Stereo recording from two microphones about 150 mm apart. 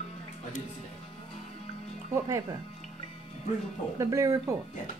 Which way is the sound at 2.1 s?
20° right (ahead or behind).